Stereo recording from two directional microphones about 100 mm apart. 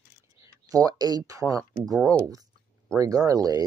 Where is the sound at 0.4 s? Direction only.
35° right (ahead or behind).